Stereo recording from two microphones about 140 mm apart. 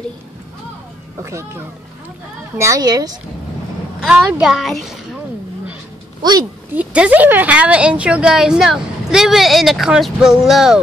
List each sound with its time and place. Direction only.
1.2 s a child's voice: 20° right (ahead or behind)
4.1 s a woman's voice: 5° right (ahead or behind)
6.7 s a woman's voice: 10° right (ahead or behind)